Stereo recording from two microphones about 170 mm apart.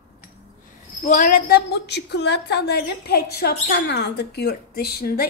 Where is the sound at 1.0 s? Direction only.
50° left (ahead or behind).